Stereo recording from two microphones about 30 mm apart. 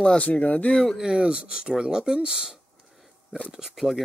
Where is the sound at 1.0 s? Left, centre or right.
Right.